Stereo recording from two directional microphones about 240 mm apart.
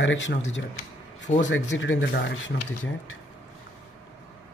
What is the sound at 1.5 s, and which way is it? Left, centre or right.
Speech, left.